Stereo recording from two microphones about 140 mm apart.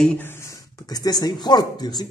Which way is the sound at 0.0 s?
10° left (ahead or behind).